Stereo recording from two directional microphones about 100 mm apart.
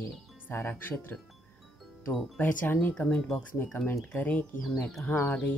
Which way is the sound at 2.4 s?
20° left (ahead or behind).